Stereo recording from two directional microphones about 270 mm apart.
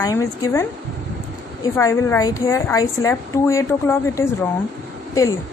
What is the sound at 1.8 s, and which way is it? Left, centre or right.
A woman's voice, centre.